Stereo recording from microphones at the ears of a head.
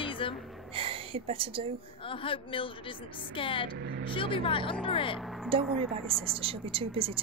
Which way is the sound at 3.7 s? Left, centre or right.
Right.